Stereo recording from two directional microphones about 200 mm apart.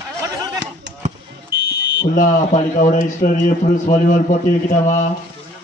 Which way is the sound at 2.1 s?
40° left (ahead or behind).